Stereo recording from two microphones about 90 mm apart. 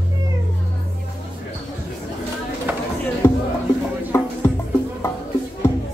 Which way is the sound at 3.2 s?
25° left (ahead or behind).